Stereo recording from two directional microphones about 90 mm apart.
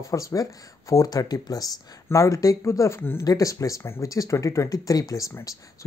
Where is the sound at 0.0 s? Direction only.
40° left (ahead or behind).